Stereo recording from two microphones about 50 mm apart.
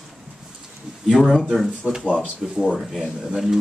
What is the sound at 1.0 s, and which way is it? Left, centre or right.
Speech, centre.